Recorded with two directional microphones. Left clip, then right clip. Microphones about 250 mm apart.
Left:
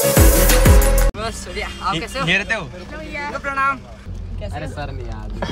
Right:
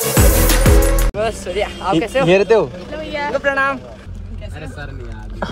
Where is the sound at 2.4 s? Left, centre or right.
Right.